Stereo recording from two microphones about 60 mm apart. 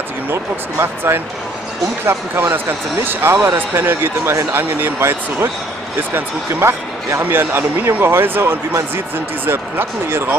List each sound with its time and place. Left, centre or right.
0.3 s speech: right